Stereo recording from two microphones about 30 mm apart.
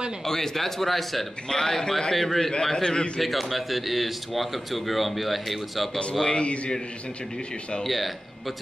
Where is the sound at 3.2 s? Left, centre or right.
Centre.